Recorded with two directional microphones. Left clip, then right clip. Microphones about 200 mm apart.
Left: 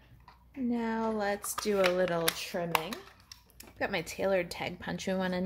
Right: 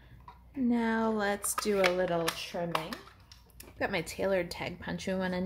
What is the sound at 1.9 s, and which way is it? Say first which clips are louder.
Speech: left 1 dB; 20° left (ahead or behind).